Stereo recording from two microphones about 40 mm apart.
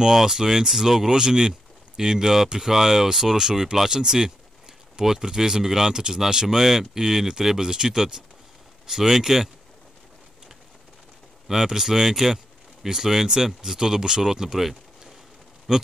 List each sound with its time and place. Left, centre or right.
0.0 s speech: centre
11.4 s speech: centre